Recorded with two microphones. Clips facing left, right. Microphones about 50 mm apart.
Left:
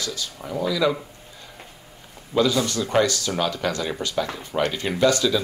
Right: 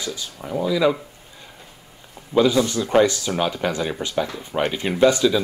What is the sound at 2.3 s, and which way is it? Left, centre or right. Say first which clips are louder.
Speech: right 3 dB; centre.